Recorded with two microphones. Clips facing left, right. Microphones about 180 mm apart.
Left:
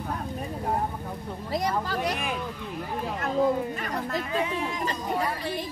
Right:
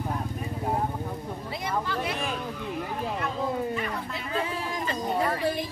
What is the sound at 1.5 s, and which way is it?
Speech, 40° left (ahead or behind).